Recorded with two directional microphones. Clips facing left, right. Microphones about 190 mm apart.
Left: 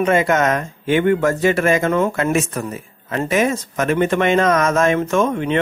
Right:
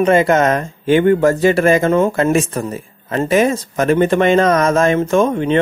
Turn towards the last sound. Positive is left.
turn(degrees=-30)  # may be behind; listen again after turning